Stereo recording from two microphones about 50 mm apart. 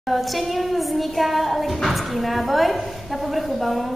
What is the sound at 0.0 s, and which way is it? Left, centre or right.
A woman's voice, centre.